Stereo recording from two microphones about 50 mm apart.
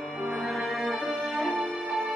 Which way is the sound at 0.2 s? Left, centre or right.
Centre.